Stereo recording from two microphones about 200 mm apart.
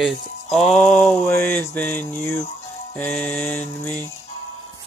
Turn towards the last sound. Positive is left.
turn(degrees=10)  # may be behind; listen again after turning